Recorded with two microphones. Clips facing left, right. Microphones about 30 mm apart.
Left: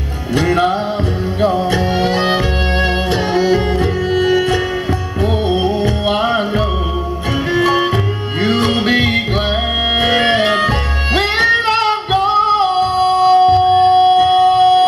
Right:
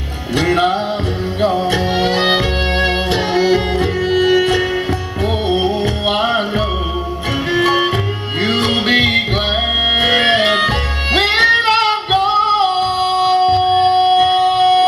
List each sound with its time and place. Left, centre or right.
0.4 s music: centre